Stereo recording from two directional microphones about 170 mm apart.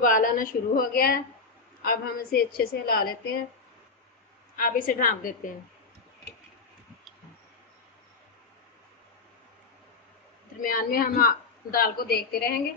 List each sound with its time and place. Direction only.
0.0 s a woman's voice: 50° left (ahead or behind)
4.6 s a woman's voice: 55° left (ahead or behind)
10.6 s a woman's voice: 55° left (ahead or behind)